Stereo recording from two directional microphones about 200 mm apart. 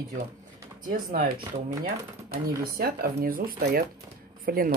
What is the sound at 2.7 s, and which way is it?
Speech, 50° right (ahead or behind).